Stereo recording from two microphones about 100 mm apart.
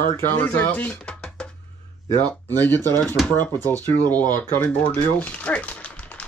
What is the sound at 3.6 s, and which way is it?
Speech, 20° left (ahead or behind).